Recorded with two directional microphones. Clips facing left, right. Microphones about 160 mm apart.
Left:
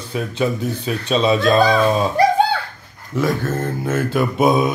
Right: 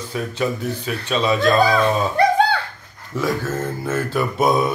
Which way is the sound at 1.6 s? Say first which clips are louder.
Left 2 dB; centre (ahead or behind).